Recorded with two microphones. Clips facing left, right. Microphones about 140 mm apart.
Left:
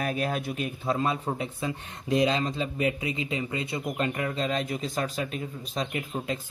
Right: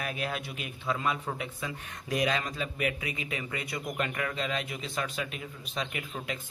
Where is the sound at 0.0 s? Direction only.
40° left (ahead or behind).